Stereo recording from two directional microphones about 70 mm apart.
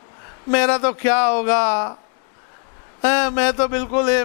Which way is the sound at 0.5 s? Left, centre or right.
Centre.